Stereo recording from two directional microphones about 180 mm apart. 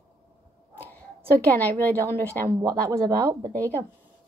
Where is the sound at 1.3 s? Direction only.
10° left (ahead or behind).